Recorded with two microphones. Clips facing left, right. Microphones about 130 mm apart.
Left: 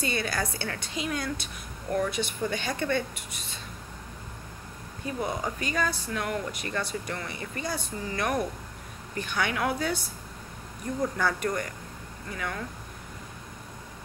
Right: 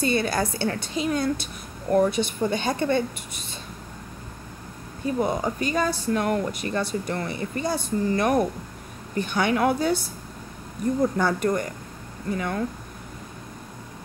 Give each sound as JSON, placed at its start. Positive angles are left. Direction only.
{"t": 0.0, "sound": "a woman's voice", "side_deg": -35}
{"t": 5.0, "sound": "a woman's voice", "side_deg": -30}
{"t": 11.1, "sound": "a woman's voice", "side_deg": -30}